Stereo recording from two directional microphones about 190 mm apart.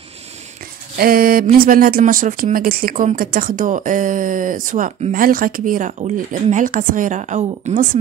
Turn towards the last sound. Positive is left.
turn(degrees=-40)  # may be behind; listen again after turning